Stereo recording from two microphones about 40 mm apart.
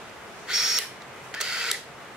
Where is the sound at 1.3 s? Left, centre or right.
Centre.